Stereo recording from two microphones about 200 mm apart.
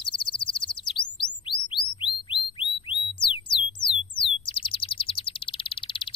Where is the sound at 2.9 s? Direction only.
25° left (ahead or behind).